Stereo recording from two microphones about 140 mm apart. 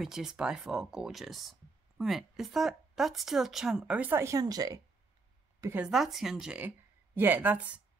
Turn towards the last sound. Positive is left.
turn(degrees=-10)  # may be behind; listen again after turning